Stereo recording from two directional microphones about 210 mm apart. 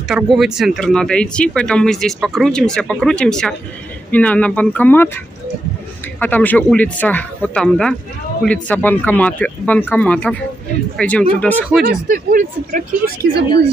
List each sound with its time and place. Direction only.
0.1 s speech: centre (ahead or behind)
11.8 s speech: 45° right (ahead or behind)